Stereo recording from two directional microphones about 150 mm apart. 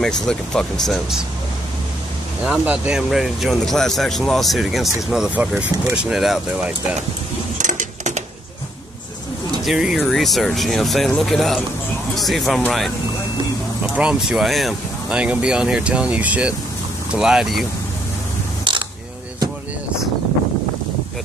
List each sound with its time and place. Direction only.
0.0 s speech: 5° left (ahead or behind)
2.4 s speech: 10° right (ahead or behind)
7.5 s a sound: 55° right (ahead or behind)
9.7 s speech: centre (ahead or behind)
13.9 s speech: 5° right (ahead or behind)
18.6 s mechanisms: 35° right (ahead or behind)